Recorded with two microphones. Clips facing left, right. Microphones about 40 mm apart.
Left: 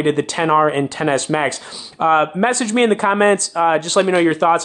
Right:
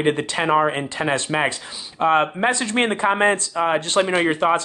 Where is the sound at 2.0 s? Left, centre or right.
Centre.